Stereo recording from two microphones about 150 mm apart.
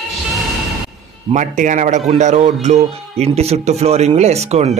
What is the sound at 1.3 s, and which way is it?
Speech, 55° right (ahead or behind).